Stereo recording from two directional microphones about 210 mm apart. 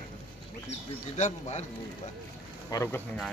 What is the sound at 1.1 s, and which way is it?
Speech, 35° left (ahead or behind).